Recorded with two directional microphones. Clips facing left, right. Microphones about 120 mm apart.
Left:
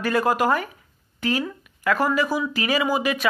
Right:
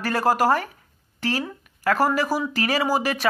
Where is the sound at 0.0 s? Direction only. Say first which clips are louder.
Even; 40° right (ahead or behind).